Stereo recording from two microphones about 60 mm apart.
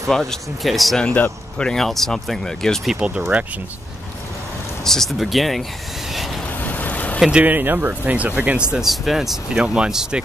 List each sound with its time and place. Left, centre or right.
0.0 s speech: centre
1.0 s speech: left
1.6 s speech: centre
3.0 s speech: right
4.8 s speech: centre
6.6 s vehicle: left
7.2 s speech: centre
7.4 s speech: right; by 8.8 s centre
8.8 s speech: centre